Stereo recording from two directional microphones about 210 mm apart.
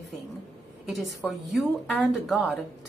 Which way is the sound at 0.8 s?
Centre (ahead or behind).